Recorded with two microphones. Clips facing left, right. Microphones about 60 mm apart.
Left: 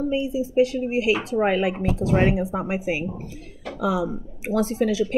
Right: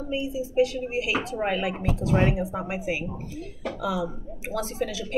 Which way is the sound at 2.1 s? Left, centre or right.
Left.